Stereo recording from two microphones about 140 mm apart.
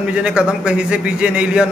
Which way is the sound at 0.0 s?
10° right (ahead or behind).